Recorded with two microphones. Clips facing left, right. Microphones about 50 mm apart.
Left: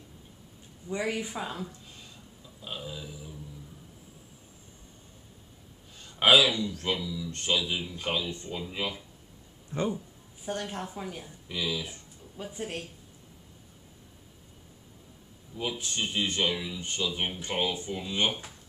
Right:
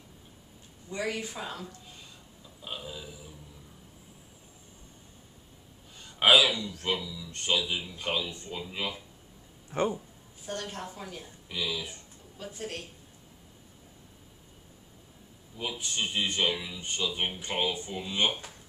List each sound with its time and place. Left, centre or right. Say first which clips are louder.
0.8 s speech: left 2 dB; centre
2.6 s a man's voice: left 1 dB; centre
5.9 s a man's voice: even; centre
9.7 s speech: right 2 dB; right
10.4 s speech: left 3 dB; centre
11.4 s a man's voice: left 1 dB; centre
12.4 s speech: left 2 dB; centre
15.5 s a man's voice: left 1 dB; centre